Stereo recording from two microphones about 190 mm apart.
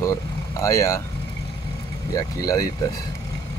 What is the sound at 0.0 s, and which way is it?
Speech, 15° left (ahead or behind).